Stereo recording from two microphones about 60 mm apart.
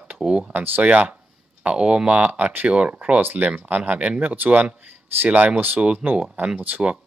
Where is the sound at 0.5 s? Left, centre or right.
Right.